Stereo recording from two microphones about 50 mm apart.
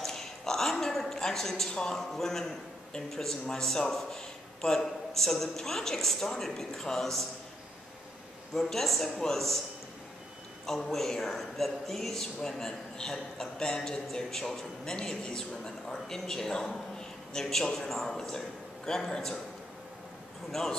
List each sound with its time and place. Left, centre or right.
0.0 s a sound: centre
1.7 s a man's voice: centre
8.5 s a man's voice: centre
10.9 s a man's voice: centre